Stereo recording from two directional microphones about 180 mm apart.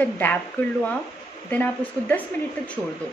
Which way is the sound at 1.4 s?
10° left (ahead or behind).